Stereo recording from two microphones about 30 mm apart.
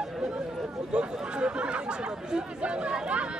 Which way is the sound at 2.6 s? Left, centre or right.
Right.